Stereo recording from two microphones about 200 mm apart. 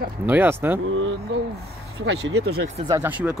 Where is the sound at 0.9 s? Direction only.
80° right.